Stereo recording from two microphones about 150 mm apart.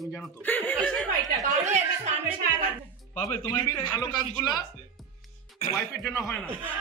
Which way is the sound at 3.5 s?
30° left (ahead or behind).